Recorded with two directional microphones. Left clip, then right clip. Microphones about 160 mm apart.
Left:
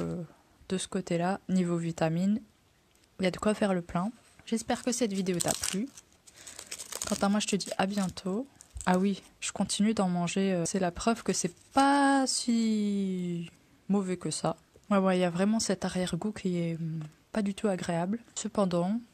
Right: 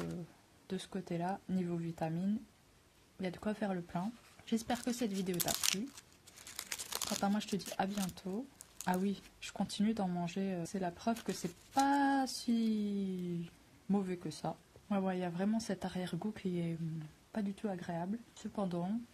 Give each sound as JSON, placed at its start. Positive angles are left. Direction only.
{"t": 0.7, "sound": "speech", "side_deg": 40}
{"t": 4.5, "sound": "speech", "side_deg": 25}
{"t": 6.5, "sound": "crumpling", "side_deg": -5}
{"t": 7.2, "sound": "speech", "side_deg": 35}
{"t": 17.3, "sound": "speech", "side_deg": 45}